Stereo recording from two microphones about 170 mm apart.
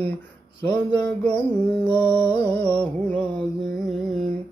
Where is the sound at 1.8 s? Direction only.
10° left (ahead or behind).